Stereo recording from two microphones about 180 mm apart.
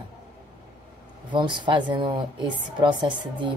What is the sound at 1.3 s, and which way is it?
Speech, 25° right (ahead or behind).